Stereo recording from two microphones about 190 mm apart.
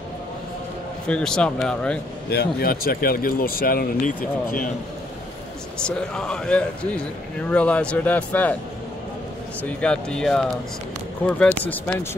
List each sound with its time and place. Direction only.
1.0 s speech: 5° left (ahead or behind)
2.3 s speech: 50° left (ahead or behind)
5.9 s speech: 5° left (ahead or behind)
9.6 s speech: 5° left (ahead or behind)